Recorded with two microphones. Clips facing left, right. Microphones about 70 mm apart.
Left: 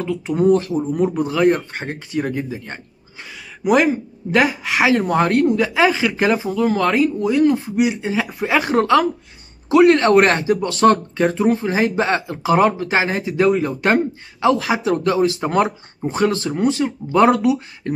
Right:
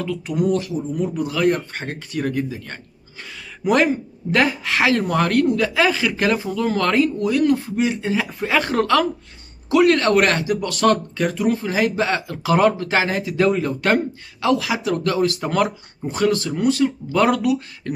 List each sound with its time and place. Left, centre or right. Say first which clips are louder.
0.0 s speech: left 4 dB; left
1.2 s speech: left 2 dB; left
3.6 s speech: left 2 dB; centre
7.2 s speech: left 2 dB; left